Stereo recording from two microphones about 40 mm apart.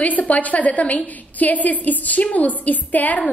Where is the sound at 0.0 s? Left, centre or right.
Left.